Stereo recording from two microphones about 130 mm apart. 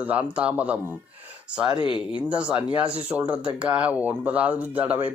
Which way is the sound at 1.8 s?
40° left (ahead or behind).